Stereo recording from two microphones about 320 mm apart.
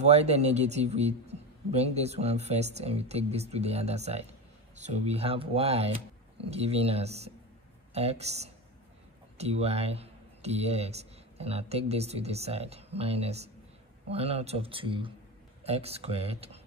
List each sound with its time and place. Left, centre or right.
0.0 s a man's voice: centre